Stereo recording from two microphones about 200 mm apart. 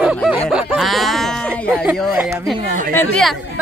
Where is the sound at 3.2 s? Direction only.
Centre (ahead or behind).